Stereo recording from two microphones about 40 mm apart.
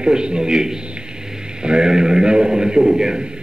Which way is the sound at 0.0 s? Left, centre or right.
Right.